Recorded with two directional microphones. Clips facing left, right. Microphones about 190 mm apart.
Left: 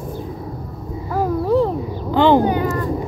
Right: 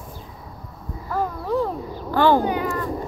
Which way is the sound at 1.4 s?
25° left (ahead or behind).